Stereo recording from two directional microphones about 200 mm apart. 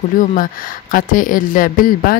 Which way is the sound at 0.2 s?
40° left (ahead or behind).